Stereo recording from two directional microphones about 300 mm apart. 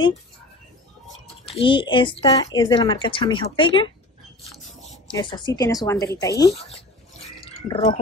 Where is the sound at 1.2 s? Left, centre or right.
Centre.